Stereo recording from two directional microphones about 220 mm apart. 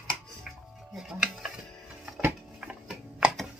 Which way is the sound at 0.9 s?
Centre (ahead or behind).